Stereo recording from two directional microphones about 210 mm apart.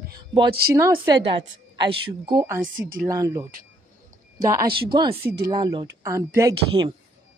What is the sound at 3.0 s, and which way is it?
A woman's voice, 15° right (ahead or behind).